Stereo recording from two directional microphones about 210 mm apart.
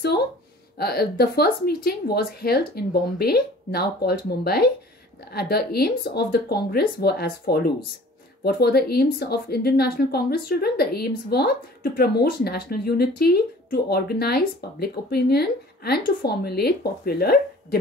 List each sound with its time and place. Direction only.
0.7 s a woman's voice: 50° left (ahead or behind)